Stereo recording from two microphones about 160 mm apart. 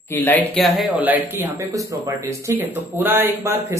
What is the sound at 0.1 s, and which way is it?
Speech, 10° left (ahead or behind).